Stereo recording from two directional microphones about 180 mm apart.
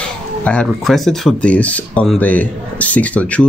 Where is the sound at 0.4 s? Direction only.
5° left (ahead or behind).